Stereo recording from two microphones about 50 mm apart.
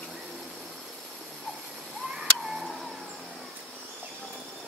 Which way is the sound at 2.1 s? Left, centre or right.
Centre.